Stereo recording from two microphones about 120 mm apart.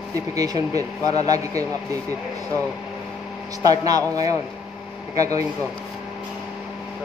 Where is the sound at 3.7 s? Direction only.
30° right (ahead or behind).